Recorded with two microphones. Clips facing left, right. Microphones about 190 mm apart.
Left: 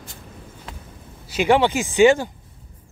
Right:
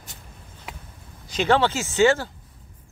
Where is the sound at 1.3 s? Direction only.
10° left (ahead or behind).